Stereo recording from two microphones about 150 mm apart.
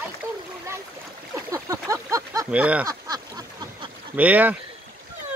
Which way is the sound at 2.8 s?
25° right (ahead or behind).